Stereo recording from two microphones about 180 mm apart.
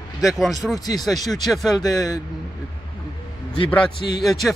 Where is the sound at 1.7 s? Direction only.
20° left (ahead or behind).